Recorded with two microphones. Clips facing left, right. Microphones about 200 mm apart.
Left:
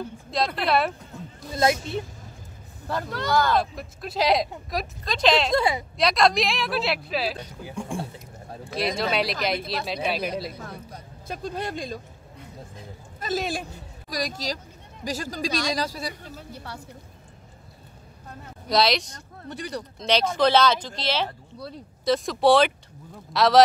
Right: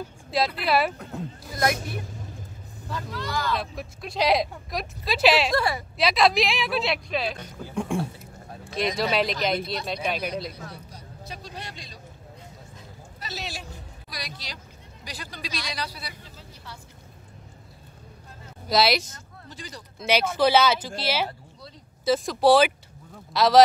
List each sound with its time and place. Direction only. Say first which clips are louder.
0.7 s speech: left 1 dB; 5° right (ahead or behind)
1.5 s a woman's voice: left 4 dB; 25° left (ahead or behind)
2.9 s speech: left 4 dB; 60° left (ahead or behind)
3.5 s speech: left 6 dB; centre (ahead or behind)
5.5 s a woman's voice: left 2 dB; 20° left (ahead or behind)
5.9 s speech: right 1 dB; centre (ahead or behind)
8.9 s speech: right 2 dB; centre (ahead or behind)
10.7 s speech: left 3 dB; 50° left (ahead or behind)
13.2 s speech: left 10 dB; 50° left (ahead or behind)
16.5 s a sound: left 4 dB; 65° left (ahead or behind)
18.7 s speech: even; 5° right (ahead or behind)
19.5 s speech: left 9 dB; 65° left (ahead or behind)
20.0 s speech: even; 5° right (ahead or behind)